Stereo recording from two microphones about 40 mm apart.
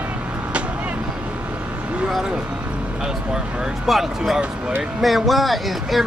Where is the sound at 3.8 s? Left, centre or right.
Centre.